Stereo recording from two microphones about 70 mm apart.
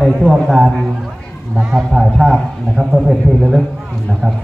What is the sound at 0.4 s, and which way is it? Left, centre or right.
A man's voice, centre.